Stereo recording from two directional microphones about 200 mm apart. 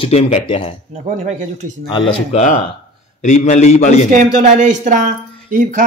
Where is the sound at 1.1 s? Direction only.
35° right (ahead or behind).